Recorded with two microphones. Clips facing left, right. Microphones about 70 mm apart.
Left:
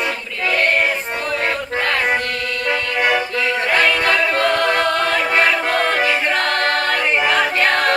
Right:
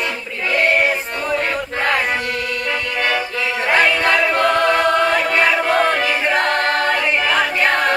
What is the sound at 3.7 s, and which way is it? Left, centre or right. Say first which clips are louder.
Music: right 2 dB; centre.